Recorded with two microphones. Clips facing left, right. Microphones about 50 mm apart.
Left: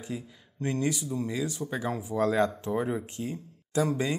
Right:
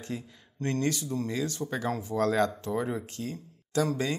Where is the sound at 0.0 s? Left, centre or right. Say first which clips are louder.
Even; centre.